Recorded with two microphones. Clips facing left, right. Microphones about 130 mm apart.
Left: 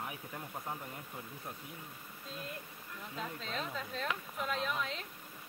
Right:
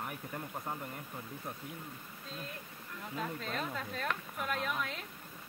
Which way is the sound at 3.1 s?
5° right (ahead or behind).